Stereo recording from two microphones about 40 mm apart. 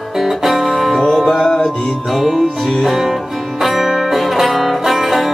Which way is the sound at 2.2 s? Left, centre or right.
Centre.